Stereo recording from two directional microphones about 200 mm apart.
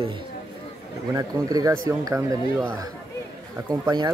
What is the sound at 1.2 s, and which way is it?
Speech, 20° right (ahead or behind).